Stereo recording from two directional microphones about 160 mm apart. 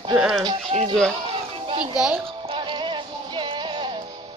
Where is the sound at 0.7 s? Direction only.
50° right (ahead or behind).